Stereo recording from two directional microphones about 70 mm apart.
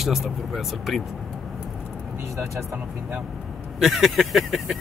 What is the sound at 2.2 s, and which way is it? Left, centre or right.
Speech, right.